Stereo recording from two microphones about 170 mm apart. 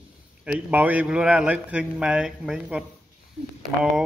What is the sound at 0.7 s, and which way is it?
Speech, 10° right (ahead or behind).